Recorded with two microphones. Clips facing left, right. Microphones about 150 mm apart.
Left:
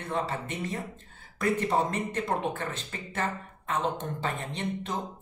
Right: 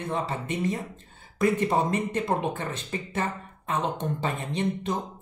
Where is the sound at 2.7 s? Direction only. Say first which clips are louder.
Right 5 dB; 15° right (ahead or behind).